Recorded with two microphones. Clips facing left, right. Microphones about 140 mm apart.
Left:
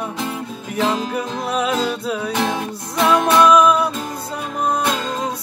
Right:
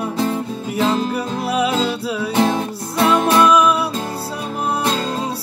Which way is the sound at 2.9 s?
30° right (ahead or behind).